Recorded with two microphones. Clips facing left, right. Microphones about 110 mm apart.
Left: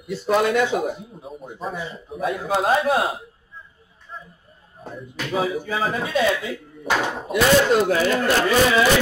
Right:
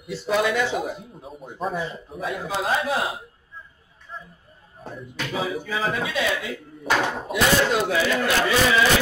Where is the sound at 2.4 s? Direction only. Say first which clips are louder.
Left 5 dB; 45° left (ahead or behind).